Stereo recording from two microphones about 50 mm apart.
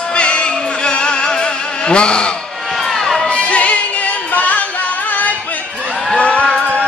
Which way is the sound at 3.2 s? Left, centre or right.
Left.